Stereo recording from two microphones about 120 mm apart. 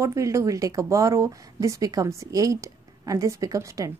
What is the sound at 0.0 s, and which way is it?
Speech, 25° right (ahead or behind).